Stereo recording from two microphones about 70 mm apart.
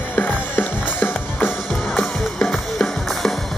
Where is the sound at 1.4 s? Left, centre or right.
Centre.